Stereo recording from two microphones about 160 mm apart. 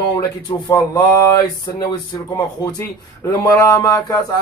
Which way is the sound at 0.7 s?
15° left (ahead or behind).